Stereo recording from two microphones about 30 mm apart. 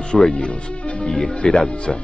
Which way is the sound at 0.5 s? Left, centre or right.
Left.